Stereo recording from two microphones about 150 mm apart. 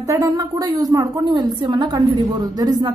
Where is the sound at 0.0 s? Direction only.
20° right (ahead or behind).